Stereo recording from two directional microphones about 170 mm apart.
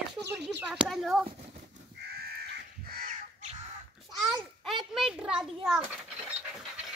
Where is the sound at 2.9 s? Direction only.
55° right (ahead or behind).